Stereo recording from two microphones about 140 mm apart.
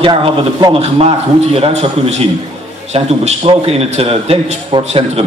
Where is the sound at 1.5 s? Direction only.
45° right (ahead or behind).